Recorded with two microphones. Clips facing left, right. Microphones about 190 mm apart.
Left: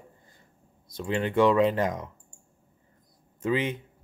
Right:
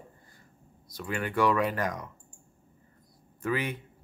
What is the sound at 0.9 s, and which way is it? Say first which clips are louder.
Speech: left 5 dB; 25° left (ahead or behind).